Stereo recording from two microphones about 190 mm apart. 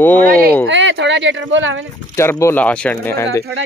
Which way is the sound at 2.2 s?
15° left (ahead or behind).